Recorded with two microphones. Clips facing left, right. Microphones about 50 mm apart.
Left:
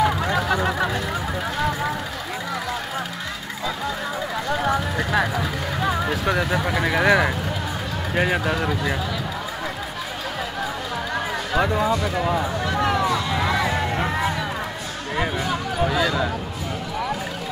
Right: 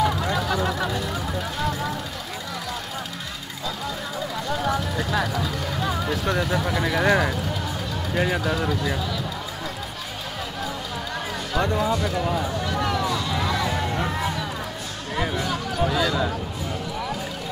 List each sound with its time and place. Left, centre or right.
0.0 s vehicle: centre
4.5 s vehicle: left
5.4 s music: left
8.1 s speech: left
11.1 s a sound: centre